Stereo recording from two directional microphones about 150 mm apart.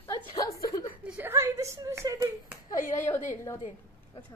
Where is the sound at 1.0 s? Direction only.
10° right (ahead or behind).